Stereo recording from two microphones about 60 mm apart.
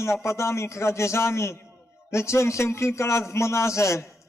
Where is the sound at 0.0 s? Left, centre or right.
Left.